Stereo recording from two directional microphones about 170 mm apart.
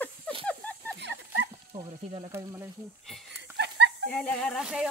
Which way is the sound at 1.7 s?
30° right (ahead or behind).